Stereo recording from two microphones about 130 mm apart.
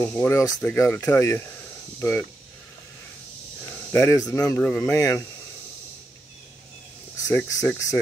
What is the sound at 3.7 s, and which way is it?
Cricket, 15° left (ahead or behind).